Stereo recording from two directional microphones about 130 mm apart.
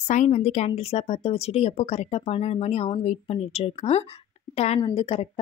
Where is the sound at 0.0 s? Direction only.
65° left (ahead or behind).